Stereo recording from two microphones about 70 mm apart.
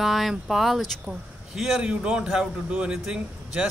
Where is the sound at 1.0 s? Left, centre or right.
Centre.